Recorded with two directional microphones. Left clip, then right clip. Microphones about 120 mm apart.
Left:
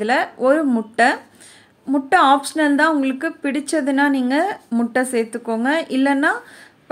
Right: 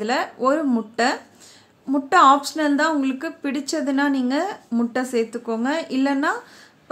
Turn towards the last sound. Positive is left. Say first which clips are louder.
# left 4 dB
turn(degrees=20)  # may be behind; listen again after turning